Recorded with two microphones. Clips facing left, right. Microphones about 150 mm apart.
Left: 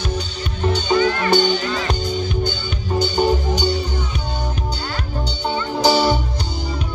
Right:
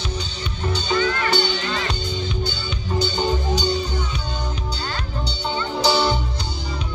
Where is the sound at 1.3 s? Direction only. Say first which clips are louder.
Left 5 dB; 45° left (ahead or behind).